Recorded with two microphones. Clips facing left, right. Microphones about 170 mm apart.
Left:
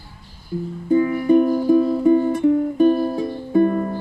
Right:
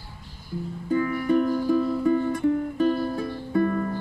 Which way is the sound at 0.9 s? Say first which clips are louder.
Left 7 dB; 25° left (ahead or behind).